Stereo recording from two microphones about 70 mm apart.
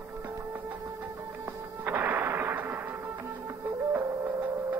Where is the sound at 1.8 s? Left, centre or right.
Right.